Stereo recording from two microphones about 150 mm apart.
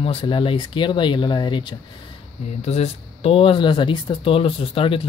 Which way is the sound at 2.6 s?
45° left (ahead or behind).